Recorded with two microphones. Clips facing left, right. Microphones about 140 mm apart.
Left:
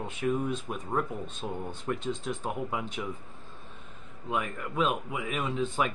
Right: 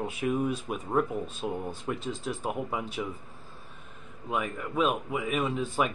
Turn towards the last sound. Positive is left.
turn(degrees=-5)  # may be behind; listen again after turning